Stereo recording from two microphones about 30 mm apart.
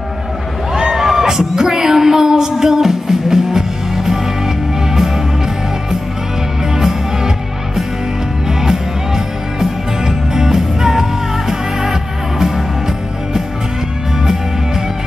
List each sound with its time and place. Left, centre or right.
0.7 s speech: centre
2.5 s music: centre
6.7 s music: centre